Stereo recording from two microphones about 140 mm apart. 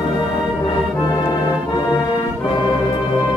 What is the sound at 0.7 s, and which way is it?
Music, 30° left (ahead or behind).